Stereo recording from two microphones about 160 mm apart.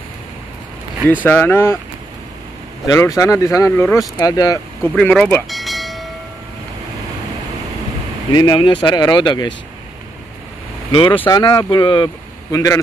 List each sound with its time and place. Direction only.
1.2 s speech: 10° left (ahead or behind)
2.9 s speech: 20° left (ahead or behind)
4.8 s a sound: 10° left (ahead or behind)
8.3 s speech: 25° left (ahead or behind)
10.9 s speech: 30° left (ahead or behind)